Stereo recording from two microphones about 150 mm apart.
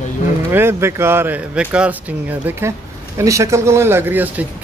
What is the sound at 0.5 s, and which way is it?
A man's voice, 15° right (ahead or behind).